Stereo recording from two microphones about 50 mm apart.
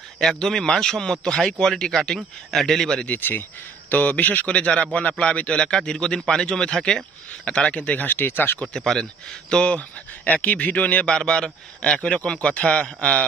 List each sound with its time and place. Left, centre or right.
0.2 s a man's voice: centre
3.1 s speech: left
3.9 s speech: left
5.6 s a man's voice: centre
7.7 s speech: left
8.7 s speech: centre; by 11.1 s left
11.1 s speech: centre